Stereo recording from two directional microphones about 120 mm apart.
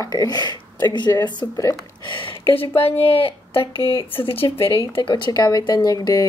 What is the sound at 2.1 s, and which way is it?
Speech, 45° left (ahead or behind).